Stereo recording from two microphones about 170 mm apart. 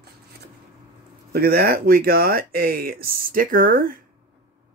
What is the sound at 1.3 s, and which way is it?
Speech, 65° right (ahead or behind).